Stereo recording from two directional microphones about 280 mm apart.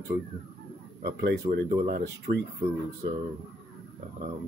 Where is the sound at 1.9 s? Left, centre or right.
Right.